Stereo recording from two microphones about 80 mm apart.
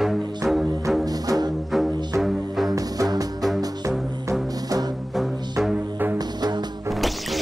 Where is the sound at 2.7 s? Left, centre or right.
Right.